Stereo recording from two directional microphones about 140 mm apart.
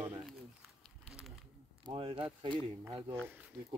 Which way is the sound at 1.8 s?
40° right (ahead or behind).